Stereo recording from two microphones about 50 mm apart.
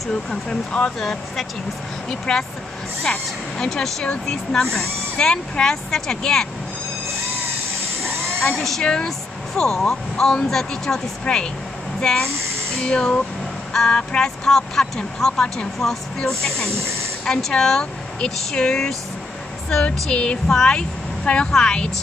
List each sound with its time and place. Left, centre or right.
0.1 s speech: centre
2.0 s speech: centre
8.5 s a woman's voice: centre
13.7 s a woman's voice: centre